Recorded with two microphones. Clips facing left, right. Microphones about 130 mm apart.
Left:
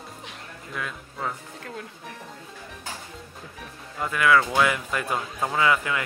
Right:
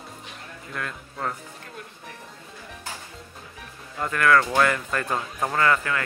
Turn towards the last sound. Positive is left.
turn(degrees=15)  # may be behind; listen again after turning